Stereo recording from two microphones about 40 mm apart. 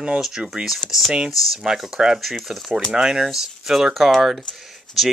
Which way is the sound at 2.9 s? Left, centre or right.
Centre.